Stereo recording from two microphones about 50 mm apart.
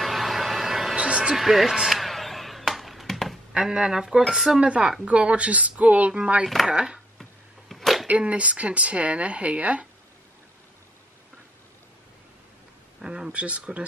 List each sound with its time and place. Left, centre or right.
0.0 s a sound: centre
0.9 s a sound: right
1.3 s a sound: centre
3.5 s speech: centre
4.6 s speech: right
6.4 s speech: centre
7.2 s arrow: centre
8.1 s speech: right
13.0 s speech: centre